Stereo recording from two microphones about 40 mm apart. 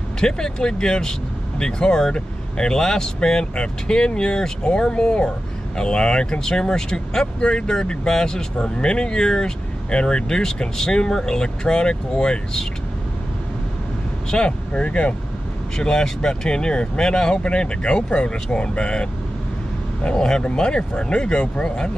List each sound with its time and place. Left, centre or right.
0.2 s speech: centre
14.3 s speech: left
15.8 s speech: centre
21.6 s speech: centre